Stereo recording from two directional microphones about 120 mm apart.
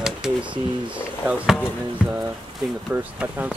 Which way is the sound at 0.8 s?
10° right (ahead or behind).